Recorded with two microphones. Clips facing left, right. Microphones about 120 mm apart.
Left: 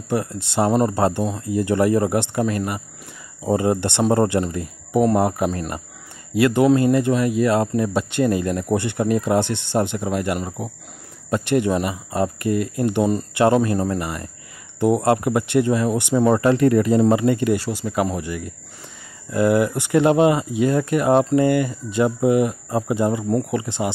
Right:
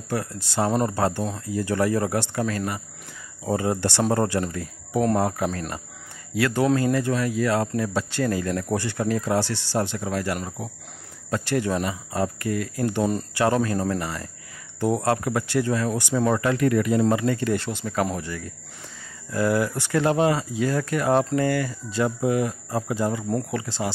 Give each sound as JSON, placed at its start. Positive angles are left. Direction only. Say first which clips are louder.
{"t": 0.1, "sound": "speech", "louder": "left 5 dB", "side_deg": 25}
{"t": 17.0, "sound": "speech", "louder": "left 5 dB", "side_deg": 20}